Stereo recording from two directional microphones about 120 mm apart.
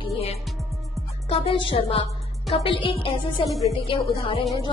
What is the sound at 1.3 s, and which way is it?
Speech, 50° left (ahead or behind).